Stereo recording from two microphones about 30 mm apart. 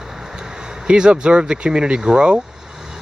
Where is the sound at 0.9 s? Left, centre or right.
Right.